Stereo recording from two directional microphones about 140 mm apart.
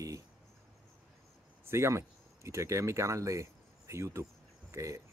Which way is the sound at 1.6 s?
20° right (ahead or behind).